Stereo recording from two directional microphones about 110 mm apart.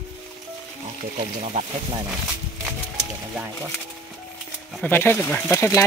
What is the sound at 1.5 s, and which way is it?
Speech, 90° right.